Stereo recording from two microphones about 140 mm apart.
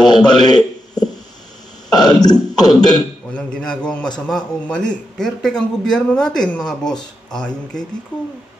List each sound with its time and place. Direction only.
0.0 s a man's voice: 30° left (ahead or behind)
0.6 s a man's voice: 5° left (ahead or behind)
2.0 s a man's voice: 30° left (ahead or behind)
2.5 s a sound: 30° left (ahead or behind)
3.3 s speech: 5° left (ahead or behind)